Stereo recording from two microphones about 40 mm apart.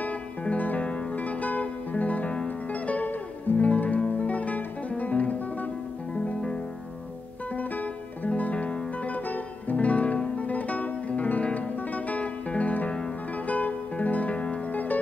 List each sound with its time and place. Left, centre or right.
0.4 s music: left
7.5 s music: left
14.7 s music: left